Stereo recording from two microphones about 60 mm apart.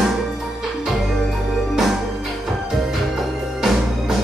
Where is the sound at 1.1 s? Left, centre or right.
Centre.